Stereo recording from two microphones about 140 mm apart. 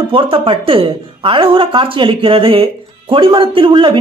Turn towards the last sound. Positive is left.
turn(degrees=-35)  # may be behind; listen again after turning